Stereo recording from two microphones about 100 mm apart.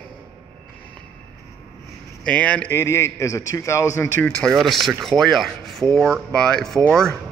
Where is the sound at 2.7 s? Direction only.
25° left (ahead or behind).